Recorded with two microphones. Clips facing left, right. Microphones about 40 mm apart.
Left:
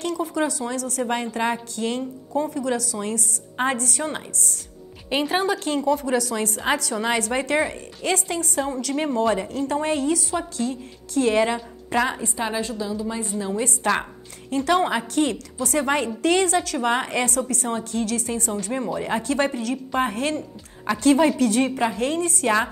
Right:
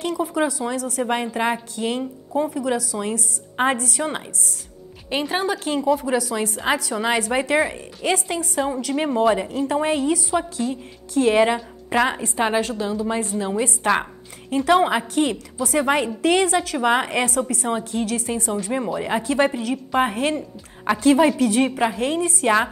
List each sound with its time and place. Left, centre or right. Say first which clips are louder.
0.0 s a woman's voice: right 2 dB; centre
5.1 s a woman's voice: left 1 dB; centre
12.4 s a woman's voice: right 7 dB; right
13.6 s a woman's voice: right 2 dB; centre